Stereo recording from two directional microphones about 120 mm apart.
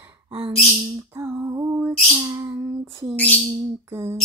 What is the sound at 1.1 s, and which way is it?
Female singing, 20° right (ahead or behind).